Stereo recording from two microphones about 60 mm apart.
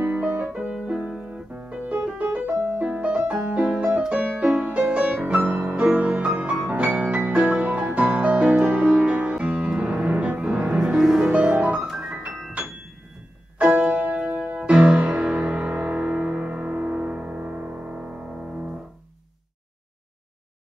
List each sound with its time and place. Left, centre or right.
0.0 s music: right
2.4 s music: right
2.8 s music: right
13.6 s music: right